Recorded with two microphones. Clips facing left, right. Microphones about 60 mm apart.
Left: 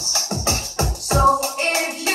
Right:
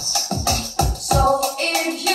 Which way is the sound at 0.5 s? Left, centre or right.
Left.